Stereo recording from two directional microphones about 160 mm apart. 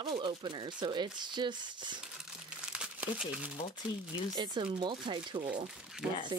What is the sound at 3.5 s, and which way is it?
Speech, 35° left (ahead or behind).